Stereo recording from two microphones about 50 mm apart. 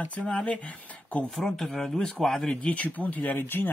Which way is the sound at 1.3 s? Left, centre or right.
Centre.